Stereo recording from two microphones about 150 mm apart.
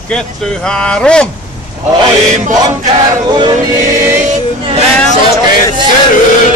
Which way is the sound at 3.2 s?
30° right (ahead or behind).